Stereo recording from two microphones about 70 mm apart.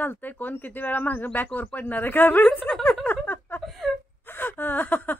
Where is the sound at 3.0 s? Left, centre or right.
Left.